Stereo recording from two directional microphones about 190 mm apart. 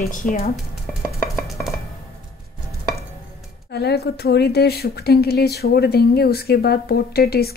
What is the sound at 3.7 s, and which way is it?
A woman's voice, 60° left (ahead or behind).